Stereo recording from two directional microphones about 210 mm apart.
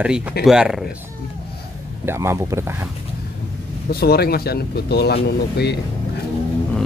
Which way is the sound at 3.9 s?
50° left (ahead or behind).